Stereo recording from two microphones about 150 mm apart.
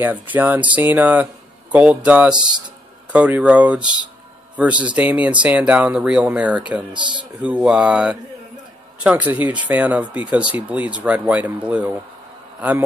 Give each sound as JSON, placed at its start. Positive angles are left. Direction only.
{"t": 0.0, "sound": "speech", "side_deg": -10}
{"t": 6.9, "sound": "speech", "side_deg": -30}
{"t": 7.4, "sound": "a man's voice", "side_deg": -5}